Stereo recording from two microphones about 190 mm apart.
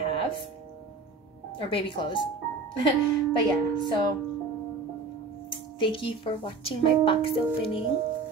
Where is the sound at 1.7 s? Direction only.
25° left (ahead or behind).